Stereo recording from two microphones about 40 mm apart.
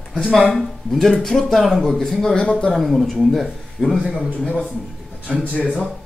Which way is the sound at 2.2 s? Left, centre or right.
Centre.